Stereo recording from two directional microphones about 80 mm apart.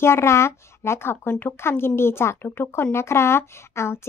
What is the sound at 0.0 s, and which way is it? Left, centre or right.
Speech, left.